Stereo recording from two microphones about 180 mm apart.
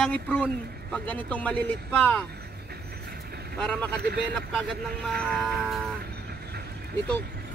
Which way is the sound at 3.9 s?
60° right (ahead or behind).